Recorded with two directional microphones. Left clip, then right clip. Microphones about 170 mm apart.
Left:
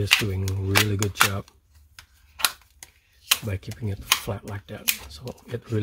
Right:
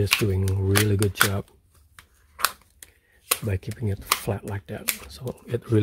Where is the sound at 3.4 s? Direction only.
45° right (ahead or behind).